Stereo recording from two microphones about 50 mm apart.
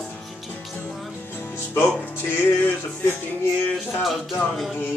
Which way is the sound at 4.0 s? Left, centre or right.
Centre.